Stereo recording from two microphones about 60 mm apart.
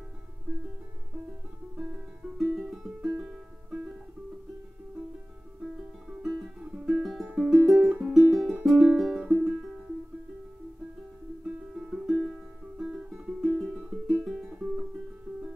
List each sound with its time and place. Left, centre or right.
1.8 s music: centre
3.2 s music: centre
6.2 s music: centre
11.7 s music: centre